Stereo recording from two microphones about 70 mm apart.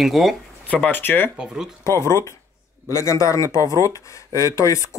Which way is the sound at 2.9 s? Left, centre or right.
Left.